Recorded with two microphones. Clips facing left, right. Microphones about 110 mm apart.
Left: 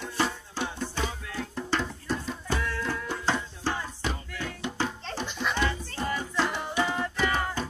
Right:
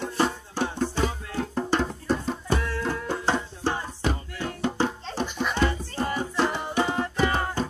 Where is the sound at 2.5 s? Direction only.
20° right (ahead or behind).